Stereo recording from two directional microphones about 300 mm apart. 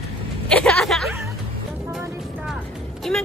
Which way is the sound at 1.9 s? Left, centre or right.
Centre.